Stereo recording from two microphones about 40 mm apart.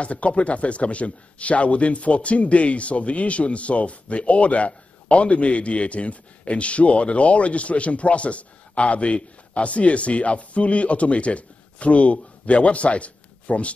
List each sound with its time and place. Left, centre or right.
0.0 s a man's voice: left